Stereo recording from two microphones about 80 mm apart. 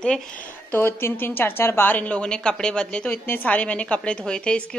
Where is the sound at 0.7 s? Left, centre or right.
Left.